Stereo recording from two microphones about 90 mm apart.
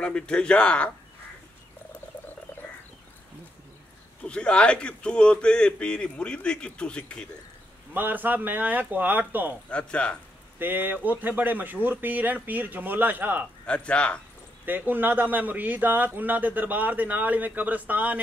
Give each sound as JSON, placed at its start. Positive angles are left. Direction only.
{"t": 0.0, "sound": "speech", "side_deg": 10}
{"t": 4.2, "sound": "speech", "side_deg": 10}
{"t": 7.9, "sound": "a man's voice", "side_deg": -20}
{"t": 9.7, "sound": "speech", "side_deg": 10}
{"t": 10.6, "sound": "a man's voice", "side_deg": -20}
{"t": 13.7, "sound": "speech", "side_deg": 10}
{"t": 14.7, "sound": "a man's voice", "side_deg": -20}